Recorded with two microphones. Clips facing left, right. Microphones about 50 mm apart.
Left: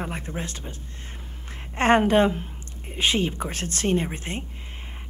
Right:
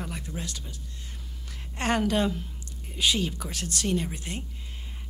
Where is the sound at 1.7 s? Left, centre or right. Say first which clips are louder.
Left 7 dB; left.